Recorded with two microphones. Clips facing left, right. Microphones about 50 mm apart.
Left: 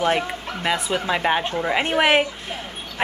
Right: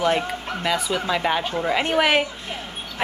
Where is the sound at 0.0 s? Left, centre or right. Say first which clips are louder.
Even; centre.